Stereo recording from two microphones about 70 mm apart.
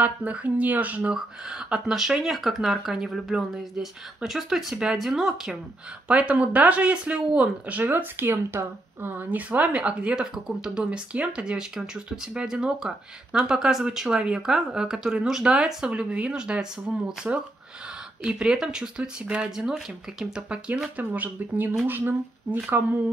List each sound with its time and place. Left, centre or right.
0.0 s speech: right
1.7 s speech: centre
6.0 s speech: centre
7.8 s speech: right; by 16.6 s centre
18.2 s speech: centre
21.0 s speech: right